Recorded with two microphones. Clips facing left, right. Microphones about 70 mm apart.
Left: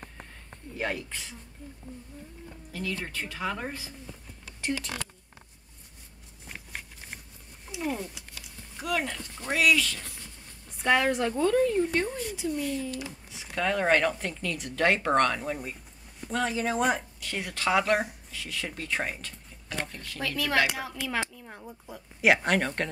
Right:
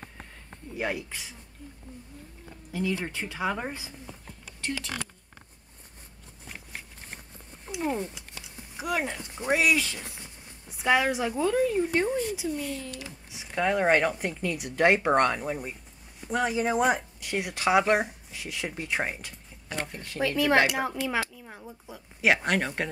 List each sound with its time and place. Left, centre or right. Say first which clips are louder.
0.7 s speech: right 1 dB; centre
2.7 s speech: right 4 dB; centre
7.8 s speech: right 2 dB; right
10.7 s a woman's voice: even; centre
13.6 s speech: right 2 dB; centre
21.4 s a woman's voice: even; centre